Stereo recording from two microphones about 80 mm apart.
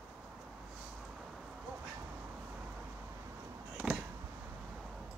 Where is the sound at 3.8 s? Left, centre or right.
Centre.